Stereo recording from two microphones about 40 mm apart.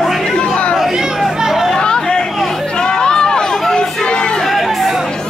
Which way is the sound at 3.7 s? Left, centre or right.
Centre.